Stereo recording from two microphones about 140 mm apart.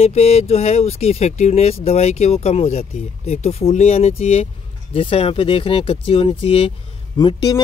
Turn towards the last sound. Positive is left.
turn(degrees=30)  # may be behind; listen again after turning